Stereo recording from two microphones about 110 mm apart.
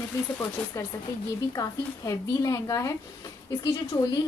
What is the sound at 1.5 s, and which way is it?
A woman's voice, 30° left (ahead or behind).